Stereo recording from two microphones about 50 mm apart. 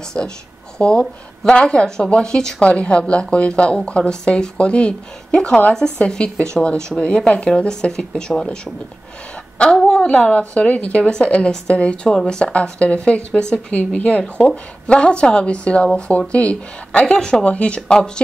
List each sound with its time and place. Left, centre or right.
0.2 s speech: left
9.8 s speech: centre
12.7 s speech: left
13.7 s speech: left
17.0 s speech: centre